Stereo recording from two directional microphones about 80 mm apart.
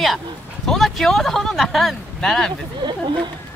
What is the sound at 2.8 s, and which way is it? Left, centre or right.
Speech, right.